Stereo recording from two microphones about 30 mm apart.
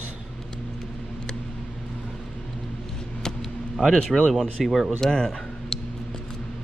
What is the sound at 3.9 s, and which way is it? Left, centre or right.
Speech, centre.